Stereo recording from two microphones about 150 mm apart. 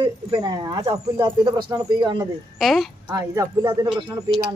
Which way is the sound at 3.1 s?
25° right (ahead or behind).